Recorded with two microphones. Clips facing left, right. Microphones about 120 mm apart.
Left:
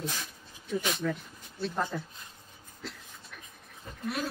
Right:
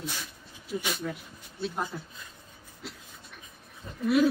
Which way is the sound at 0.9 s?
5° right (ahead or behind).